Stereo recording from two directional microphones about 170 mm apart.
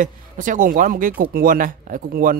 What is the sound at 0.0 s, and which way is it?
Speech, 50° right (ahead or behind).